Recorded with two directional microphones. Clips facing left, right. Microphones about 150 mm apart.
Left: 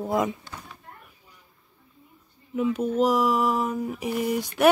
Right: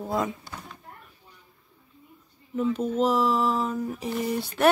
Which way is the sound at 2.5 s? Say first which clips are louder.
Left 1 dB; 10° left (ahead or behind).